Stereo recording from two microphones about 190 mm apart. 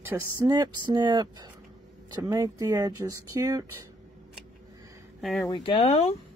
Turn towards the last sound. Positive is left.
turn(degrees=30)  # may be behind; listen again after turning